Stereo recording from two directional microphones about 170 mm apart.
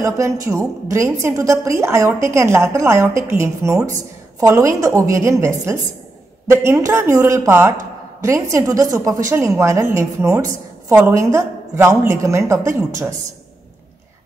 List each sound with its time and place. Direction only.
0.0 s a woman's voice: 20° right (ahead or behind)